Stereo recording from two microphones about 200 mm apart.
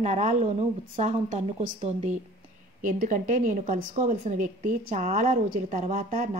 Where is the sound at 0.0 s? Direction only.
35° right (ahead or behind).